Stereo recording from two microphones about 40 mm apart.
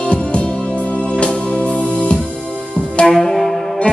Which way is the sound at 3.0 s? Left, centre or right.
Centre.